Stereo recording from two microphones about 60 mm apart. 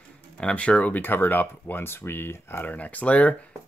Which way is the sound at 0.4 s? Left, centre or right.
Centre.